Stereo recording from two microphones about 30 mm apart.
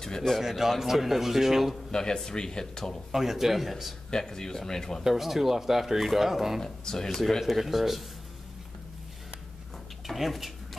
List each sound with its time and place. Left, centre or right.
0.0 s a sound: left
0.4 s speech: centre
1.9 s speech: left
3.1 s speech: centre
4.1 s speech: left
5.0 s speech: centre
6.6 s speech: left
7.1 s speech: centre
7.4 s speech: centre
10.0 s a sound: centre